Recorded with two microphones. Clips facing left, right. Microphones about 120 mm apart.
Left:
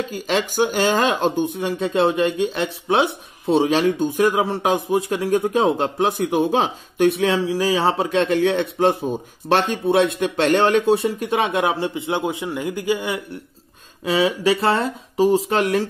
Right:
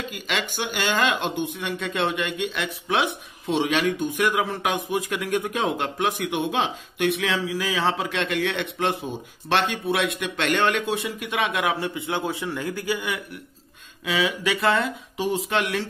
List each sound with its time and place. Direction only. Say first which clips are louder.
0.1 s speech: left 7 dB; 40° left (ahead or behind)